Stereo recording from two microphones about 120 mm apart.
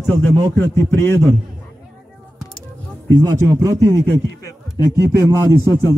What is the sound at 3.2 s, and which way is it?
Speech, 25° right (ahead or behind).